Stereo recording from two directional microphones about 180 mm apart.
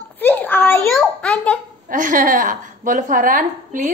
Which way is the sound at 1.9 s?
50° right (ahead or behind).